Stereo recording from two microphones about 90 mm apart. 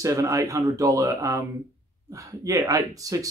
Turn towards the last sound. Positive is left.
turn(degrees=-40)  # may be behind; listen again after turning